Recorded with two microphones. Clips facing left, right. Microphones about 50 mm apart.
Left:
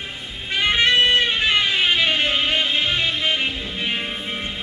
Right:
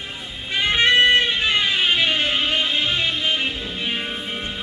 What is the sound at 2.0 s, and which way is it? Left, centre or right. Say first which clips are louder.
Music: left 1 dB; left.